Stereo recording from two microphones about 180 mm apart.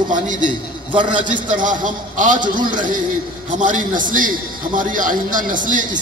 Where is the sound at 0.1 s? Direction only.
45° right (ahead or behind).